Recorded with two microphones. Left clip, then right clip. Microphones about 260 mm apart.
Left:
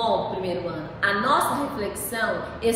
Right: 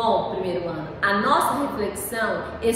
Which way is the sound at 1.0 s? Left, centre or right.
Centre.